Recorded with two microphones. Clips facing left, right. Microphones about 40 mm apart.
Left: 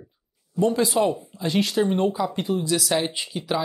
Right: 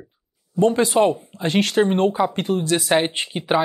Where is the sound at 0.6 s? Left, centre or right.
Right.